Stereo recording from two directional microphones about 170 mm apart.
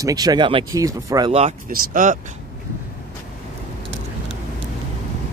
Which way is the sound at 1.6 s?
55° right (ahead or behind).